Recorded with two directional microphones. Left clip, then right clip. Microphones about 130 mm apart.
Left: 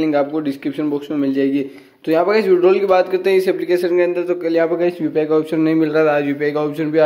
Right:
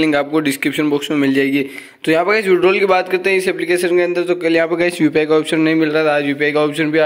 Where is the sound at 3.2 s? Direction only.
10° left (ahead or behind); by 5.6 s 10° right (ahead or behind).